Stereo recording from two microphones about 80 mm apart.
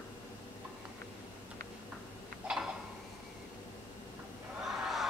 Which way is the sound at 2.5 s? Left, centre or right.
Centre.